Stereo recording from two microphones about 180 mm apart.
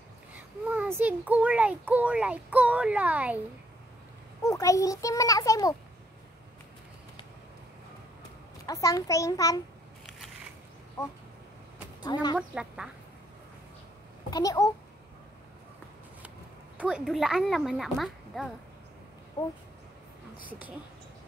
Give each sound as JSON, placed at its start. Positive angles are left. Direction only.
{"t": 0.9, "sound": "speech", "side_deg": -10}
{"t": 4.4, "sound": "a child's voice", "side_deg": 20}
{"t": 8.8, "sound": "a child's voice", "side_deg": 20}
{"t": 10.0, "sound": "biting", "side_deg": 0}
{"t": 11.0, "sound": "a sound", "side_deg": 15}
{"t": 12.0, "sound": "speech", "side_deg": 25}
{"t": 12.4, "sound": "speech", "side_deg": -5}
{"t": 14.3, "sound": "a child's voice", "side_deg": 20}
{"t": 16.7, "sound": "speech", "side_deg": -5}